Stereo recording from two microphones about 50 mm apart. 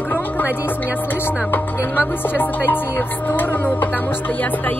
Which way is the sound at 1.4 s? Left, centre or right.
Left.